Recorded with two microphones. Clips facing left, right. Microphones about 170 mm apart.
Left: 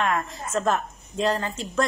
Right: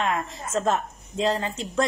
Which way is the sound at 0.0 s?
25° right (ahead or behind).